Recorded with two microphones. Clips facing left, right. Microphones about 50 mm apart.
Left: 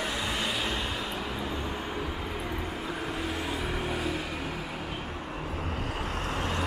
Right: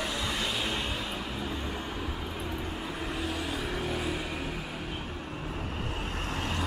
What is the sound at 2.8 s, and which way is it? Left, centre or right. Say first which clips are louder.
Vehicle: left 1 dB; left.